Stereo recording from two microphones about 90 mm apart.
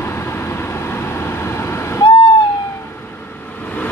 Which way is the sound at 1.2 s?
30° left (ahead or behind).